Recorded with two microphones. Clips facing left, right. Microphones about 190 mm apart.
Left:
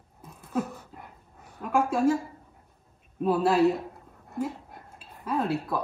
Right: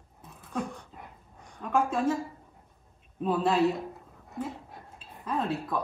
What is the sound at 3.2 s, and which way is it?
Speech, 5° left (ahead or behind).